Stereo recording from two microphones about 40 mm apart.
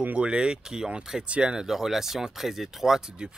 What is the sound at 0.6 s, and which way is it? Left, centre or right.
Speech, centre.